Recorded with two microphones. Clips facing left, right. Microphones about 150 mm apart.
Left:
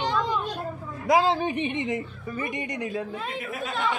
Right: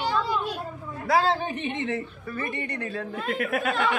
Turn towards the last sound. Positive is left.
turn(degrees=-65)  # may be behind; listen again after turning